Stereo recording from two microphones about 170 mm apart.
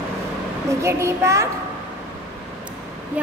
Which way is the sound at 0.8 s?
15° right (ahead or behind).